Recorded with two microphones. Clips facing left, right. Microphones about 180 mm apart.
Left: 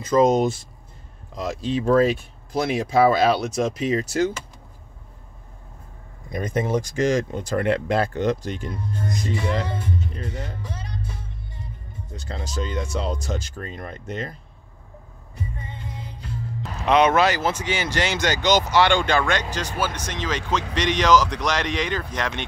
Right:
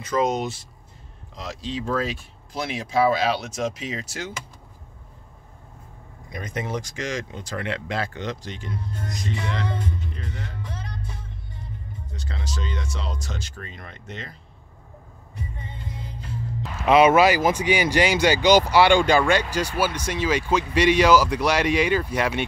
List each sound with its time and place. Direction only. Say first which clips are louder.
0.0 s speech: left 6 dB; 45° left (ahead or behind)
6.3 s speech: left 6 dB; 50° left (ahead or behind)
12.3 s speech: left 4 dB; 45° left (ahead or behind)
16.8 s speech: right 2 dB; 5° right (ahead or behind)